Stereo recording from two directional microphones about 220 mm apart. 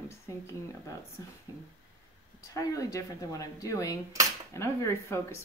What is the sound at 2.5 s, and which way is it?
Speech, 15° left (ahead or behind).